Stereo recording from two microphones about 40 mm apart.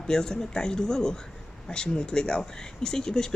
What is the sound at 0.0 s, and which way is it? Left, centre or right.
Speech, centre.